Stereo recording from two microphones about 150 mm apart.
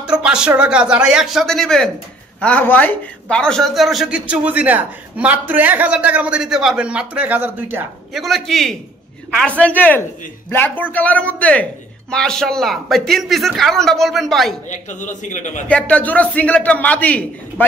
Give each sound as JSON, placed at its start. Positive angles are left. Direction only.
{"t": 0.0, "sound": "a man's voice", "side_deg": -5}
{"t": 8.1, "sound": "a man's voice", "side_deg": 0}
{"t": 14.7, "sound": "a man's voice", "side_deg": 55}
{"t": 15.7, "sound": "a man's voice", "side_deg": 10}